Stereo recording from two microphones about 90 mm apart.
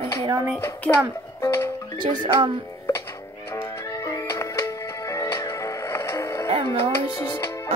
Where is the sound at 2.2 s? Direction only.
60° right (ahead or behind).